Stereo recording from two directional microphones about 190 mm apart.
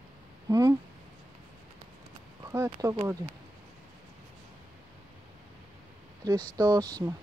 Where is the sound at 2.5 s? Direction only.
15° right (ahead or behind).